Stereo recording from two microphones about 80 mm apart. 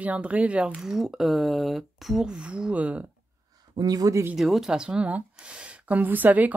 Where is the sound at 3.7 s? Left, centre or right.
Right.